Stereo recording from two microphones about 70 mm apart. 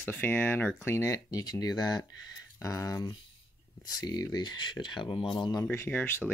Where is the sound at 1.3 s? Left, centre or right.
Left.